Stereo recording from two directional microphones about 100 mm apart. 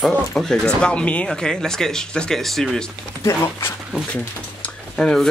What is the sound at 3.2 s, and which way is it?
Speech, 25° left (ahead or behind).